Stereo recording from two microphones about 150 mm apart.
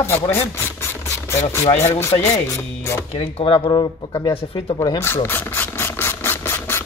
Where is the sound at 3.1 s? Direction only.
45° left (ahead or behind).